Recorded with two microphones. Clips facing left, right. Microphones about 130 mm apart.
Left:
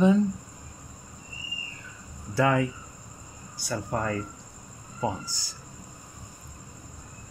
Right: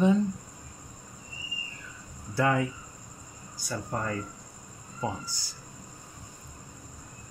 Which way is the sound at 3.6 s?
70° left (ahead or behind).